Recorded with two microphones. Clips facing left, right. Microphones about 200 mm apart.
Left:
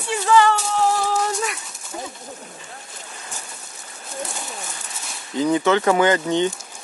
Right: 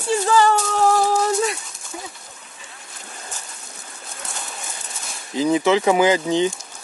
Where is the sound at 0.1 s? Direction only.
40° right (ahead or behind).